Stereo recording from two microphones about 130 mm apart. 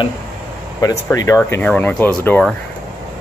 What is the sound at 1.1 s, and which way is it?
Speech, 25° left (ahead or behind).